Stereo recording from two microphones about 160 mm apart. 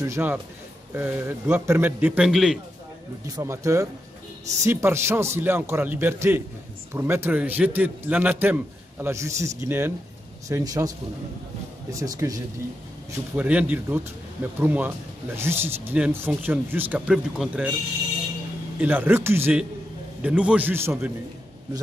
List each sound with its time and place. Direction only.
0.0 s a man's voice: 15° right (ahead or behind)
3.3 s a man's voice: 20° right (ahead or behind)
12.0 s speech: 20° right (ahead or behind)
13.4 s a man's voice: 10° right (ahead or behind)
18.8 s a man's voice: 10° right (ahead or behind)